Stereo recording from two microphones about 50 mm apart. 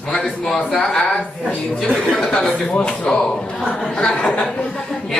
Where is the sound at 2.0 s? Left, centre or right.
Centre.